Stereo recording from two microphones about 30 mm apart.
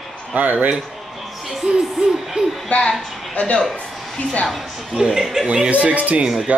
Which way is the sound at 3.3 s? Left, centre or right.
Left.